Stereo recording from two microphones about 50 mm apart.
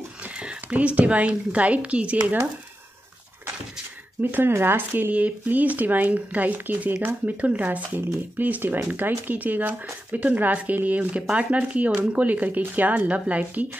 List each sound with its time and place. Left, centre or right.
0.2 s speech: right
4.2 s speech: right
5.1 s speech: right
7.3 s speech: right